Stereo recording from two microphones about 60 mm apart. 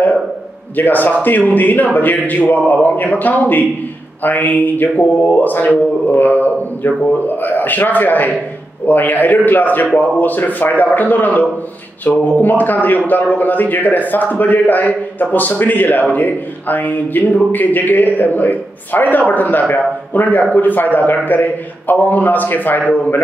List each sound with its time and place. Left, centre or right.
0.7 s a man's voice: left